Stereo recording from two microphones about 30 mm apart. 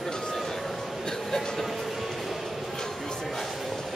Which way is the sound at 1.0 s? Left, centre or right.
Centre.